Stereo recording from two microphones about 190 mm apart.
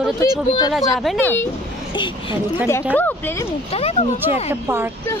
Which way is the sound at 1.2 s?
10° left (ahead or behind).